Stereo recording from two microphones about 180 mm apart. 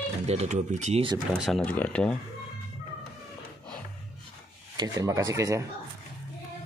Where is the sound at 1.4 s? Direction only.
Centre (ahead or behind).